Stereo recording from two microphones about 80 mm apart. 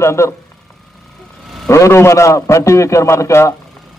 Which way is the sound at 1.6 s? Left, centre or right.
Left.